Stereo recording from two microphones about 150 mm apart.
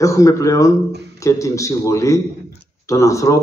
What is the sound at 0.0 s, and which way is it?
A man's voice, 20° left (ahead or behind).